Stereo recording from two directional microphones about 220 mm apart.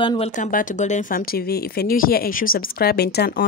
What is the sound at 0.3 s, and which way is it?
Speech, 35° left (ahead or behind).